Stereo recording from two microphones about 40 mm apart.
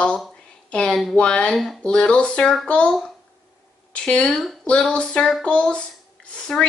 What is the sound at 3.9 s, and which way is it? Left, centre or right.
Speech, left.